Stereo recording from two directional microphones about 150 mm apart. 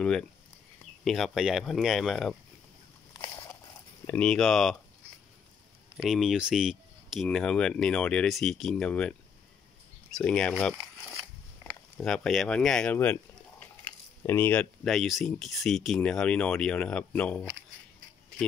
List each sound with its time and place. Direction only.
0.0 s speech: 5° left (ahead or behind)
3.1 s a sound: 25° left (ahead or behind)
4.0 s speech: 10° left (ahead or behind)
5.9 s speech: centre (ahead or behind)
10.1 s speech: 5° left (ahead or behind)
11.6 s a sound: 10° right (ahead or behind)
12.0 s speech: 5° left (ahead or behind)